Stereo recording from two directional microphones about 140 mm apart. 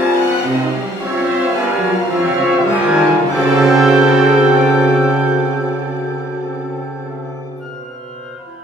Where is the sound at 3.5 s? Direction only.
Centre (ahead or behind).